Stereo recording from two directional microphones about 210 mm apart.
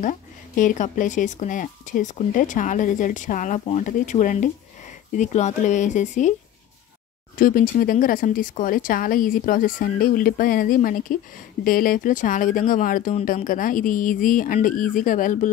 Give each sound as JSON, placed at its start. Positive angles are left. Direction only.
{"t": 0.0, "sound": "speech", "side_deg": 40}
{"t": 7.3, "sound": "speech", "side_deg": 40}